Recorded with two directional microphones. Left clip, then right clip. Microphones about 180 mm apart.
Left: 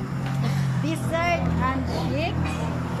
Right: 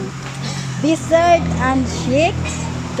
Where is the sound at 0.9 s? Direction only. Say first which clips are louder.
Right 12 dB; 45° right (ahead or behind).